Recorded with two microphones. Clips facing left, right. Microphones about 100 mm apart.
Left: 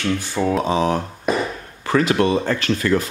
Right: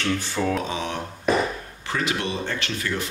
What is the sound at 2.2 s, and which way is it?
Speech, 45° left (ahead or behind).